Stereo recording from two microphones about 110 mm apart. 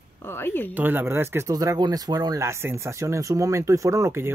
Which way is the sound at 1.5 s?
35° right (ahead or behind).